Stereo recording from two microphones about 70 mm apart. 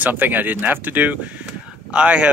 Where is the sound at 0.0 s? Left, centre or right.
Right.